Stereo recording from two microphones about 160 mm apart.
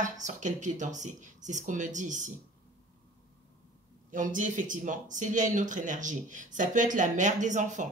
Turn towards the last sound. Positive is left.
turn(degrees=-50)  # may be behind; listen again after turning